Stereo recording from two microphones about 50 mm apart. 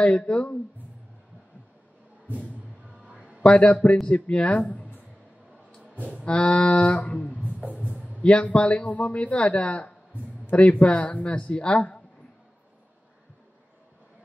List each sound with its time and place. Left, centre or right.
0.0 s a man's voice: left
3.1 s a sound: right
3.4 s a man's voice: left
5.9 s music: right
6.2 s a man's voice: left
7.8 s a sound: right
8.2 s a man's voice: left